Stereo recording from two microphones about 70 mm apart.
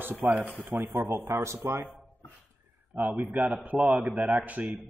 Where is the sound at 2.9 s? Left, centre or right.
Right.